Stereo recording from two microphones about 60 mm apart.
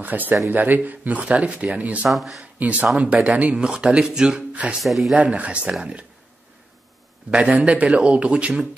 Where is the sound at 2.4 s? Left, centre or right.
Right.